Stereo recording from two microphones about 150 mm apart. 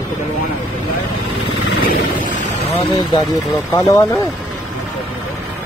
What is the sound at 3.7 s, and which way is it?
Speech, 20° left (ahead or behind).